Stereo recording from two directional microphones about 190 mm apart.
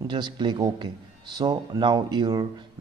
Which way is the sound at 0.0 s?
25° right (ahead or behind).